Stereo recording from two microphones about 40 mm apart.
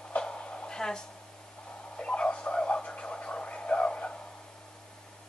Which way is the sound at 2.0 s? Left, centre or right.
Left.